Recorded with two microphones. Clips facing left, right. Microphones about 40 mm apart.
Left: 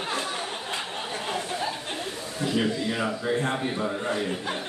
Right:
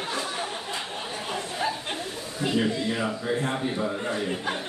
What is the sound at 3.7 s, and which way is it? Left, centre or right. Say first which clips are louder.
Speech: even; centre.